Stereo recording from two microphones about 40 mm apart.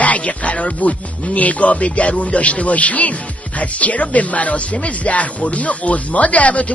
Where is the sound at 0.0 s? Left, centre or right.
Left.